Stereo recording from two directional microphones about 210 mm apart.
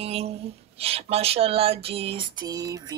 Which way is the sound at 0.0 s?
30° right (ahead or behind).